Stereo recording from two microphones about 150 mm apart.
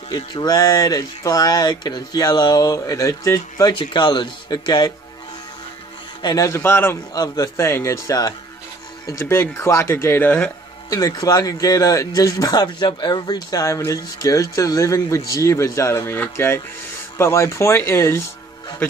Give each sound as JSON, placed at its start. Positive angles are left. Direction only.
{"t": 0.1, "sound": "speech", "side_deg": 25}
{"t": 6.2, "sound": "speech", "side_deg": 20}
{"t": 10.9, "sound": "speech", "side_deg": 25}